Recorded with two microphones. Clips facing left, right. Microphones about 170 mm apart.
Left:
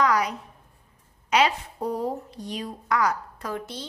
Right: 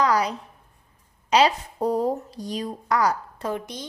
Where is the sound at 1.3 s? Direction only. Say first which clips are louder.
Right 3 dB; 35° right (ahead or behind).